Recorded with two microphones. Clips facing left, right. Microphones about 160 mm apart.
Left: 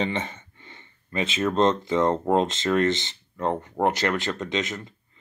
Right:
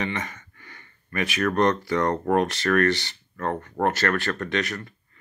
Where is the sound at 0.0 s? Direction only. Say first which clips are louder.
Left 2 dB; 25° left (ahead or behind).